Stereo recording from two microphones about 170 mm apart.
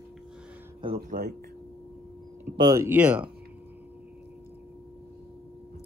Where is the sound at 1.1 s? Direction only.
60° right (ahead or behind).